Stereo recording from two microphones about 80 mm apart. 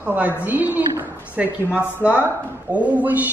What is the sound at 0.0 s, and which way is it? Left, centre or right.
A woman's voice, right.